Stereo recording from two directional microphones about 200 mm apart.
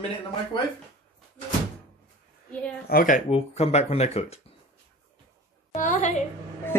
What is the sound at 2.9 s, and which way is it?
Speech, 45° left (ahead or behind).